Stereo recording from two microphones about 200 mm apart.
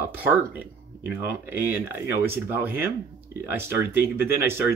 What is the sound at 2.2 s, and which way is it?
Speech, 10° right (ahead or behind).